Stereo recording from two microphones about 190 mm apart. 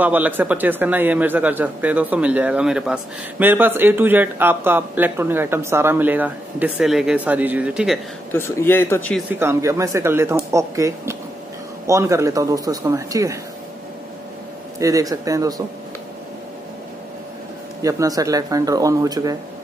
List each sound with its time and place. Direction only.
0.0 s speech: 10° right (ahead or behind)
8.3 s speech: 10° left (ahead or behind)
9.4 s speech: 15° right (ahead or behind)
14.8 s speech: 15° right (ahead or behind)
17.8 s speech: 20° right (ahead or behind)